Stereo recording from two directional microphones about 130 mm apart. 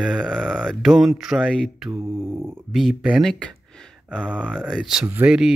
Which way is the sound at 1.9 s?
20° right (ahead or behind).